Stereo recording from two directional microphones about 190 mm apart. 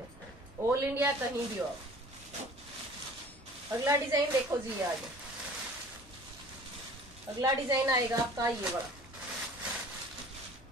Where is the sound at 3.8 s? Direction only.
15° right (ahead or behind).